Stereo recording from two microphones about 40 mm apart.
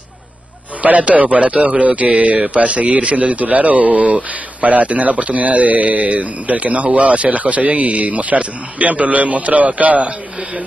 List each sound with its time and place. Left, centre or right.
0.8 s a man's voice: right